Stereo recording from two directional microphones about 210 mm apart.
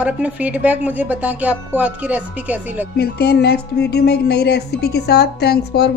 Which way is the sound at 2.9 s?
50° left (ahead or behind).